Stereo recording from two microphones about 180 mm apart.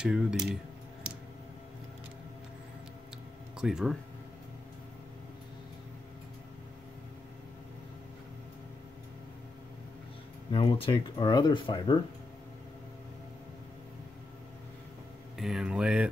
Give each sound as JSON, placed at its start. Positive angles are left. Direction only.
{"t": 0.0, "sound": "speech", "side_deg": -5}
{"t": 3.6, "sound": "speech", "side_deg": -5}
{"t": 10.5, "sound": "speech", "side_deg": 30}
{"t": 15.3, "sound": "speech", "side_deg": 0}